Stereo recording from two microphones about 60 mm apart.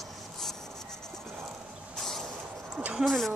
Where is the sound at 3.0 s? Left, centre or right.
Centre.